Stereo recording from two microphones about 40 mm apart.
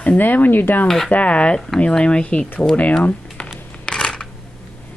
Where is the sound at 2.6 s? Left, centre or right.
Left.